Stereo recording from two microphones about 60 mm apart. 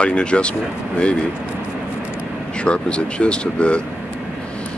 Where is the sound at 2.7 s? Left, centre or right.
Centre.